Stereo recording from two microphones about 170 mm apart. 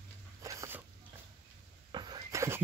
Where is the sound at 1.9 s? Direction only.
25° right (ahead or behind).